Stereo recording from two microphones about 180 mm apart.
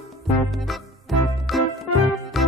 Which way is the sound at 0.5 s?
Centre (ahead or behind).